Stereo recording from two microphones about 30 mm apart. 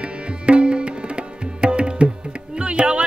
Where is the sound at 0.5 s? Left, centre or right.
Right.